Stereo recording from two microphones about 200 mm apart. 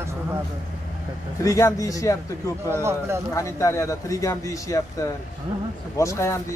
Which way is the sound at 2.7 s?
15° right (ahead or behind).